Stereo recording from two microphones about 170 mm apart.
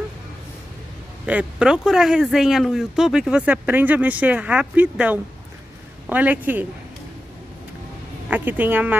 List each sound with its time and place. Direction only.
1.2 s speech: 5° right (ahead or behind)
8.3 s speech: 10° right (ahead or behind)